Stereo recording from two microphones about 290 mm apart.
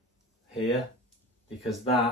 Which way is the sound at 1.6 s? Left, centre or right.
Centre.